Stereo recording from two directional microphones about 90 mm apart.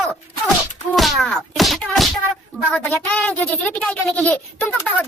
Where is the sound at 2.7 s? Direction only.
15° left (ahead or behind).